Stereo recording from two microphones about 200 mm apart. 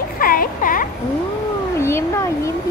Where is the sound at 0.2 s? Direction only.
45° left (ahead or behind).